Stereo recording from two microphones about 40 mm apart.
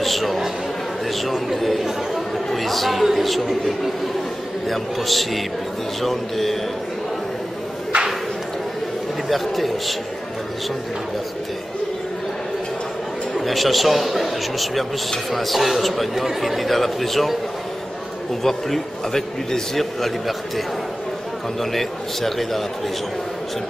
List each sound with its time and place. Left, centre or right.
0.0 s a man's voice: centre
4.6 s a man's voice: centre
7.9 s a sound: right
9.3 s a man's voice: centre
13.3 s a man's voice: centre
18.4 s a man's voice: centre